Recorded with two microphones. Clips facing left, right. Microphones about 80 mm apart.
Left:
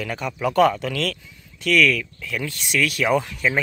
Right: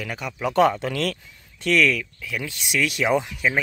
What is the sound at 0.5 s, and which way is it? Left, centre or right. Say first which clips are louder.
Speech: left 1 dB; right.